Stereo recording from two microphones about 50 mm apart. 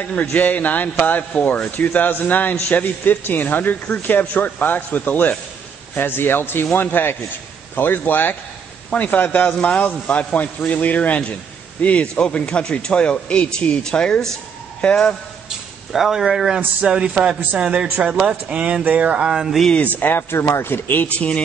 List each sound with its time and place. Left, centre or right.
0.0 s a man's voice: left
15.9 s speech: centre
20.0 s a man's voice: left
21.1 s a man's voice: left